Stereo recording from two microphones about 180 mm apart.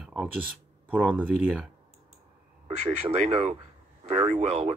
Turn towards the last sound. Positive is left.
turn(degrees=-35)  # may be behind; listen again after turning